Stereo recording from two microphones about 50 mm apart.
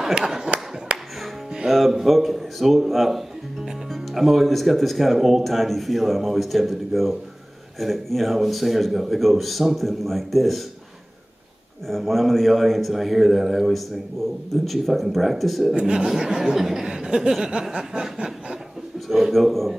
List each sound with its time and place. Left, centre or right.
0.0 s a sound: centre
0.9 s music: right
1.7 s speech: centre
11.9 s speech: centre
15.8 s a man's voice: centre